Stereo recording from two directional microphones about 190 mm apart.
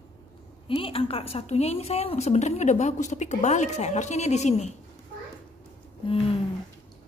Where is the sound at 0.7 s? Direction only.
30° left (ahead or behind).